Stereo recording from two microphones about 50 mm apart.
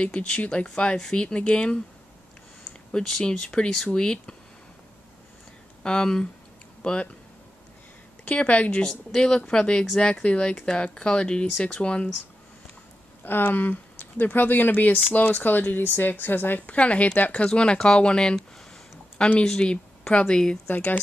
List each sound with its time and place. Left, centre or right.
0.0 s speech: left
2.9 s speech: centre
3.3 s speech: left
5.8 s speech: centre
8.3 s speech: left
8.8 s speech: centre
13.2 s a woman's voice: left
17.5 s speech: centre
19.4 s speech: centre
20.6 s a woman's voice: left